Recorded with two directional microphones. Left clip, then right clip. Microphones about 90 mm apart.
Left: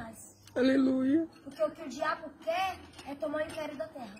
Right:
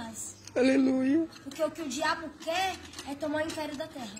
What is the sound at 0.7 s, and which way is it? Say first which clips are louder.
Speech: right 1 dB; 30° left (ahead or behind).